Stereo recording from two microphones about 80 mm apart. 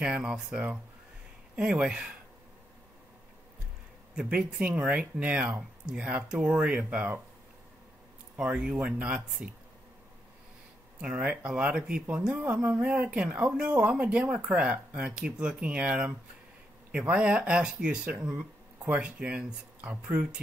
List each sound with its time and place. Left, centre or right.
0.0 s speech: centre
1.6 s speech: centre
4.1 s speech: centre
8.4 s speech: centre
11.0 s speech: centre